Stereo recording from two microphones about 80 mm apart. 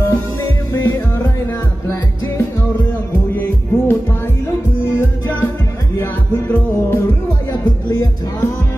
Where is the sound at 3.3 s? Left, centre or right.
Left.